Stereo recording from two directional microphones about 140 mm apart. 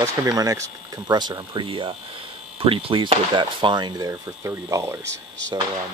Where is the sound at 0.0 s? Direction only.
25° right (ahead or behind).